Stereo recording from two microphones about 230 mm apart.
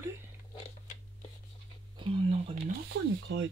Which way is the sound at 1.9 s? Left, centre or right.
Right.